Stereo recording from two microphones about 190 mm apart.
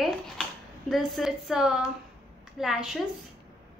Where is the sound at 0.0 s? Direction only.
Centre (ahead or behind).